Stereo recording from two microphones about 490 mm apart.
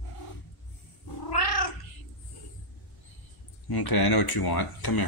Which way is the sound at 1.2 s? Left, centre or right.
Left.